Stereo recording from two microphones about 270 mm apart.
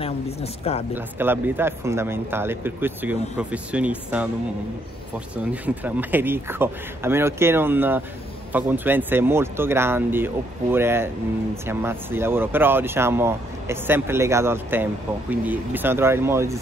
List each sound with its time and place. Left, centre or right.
0.0 s speech: left
0.9 s speech: centre
5.3 s speech: centre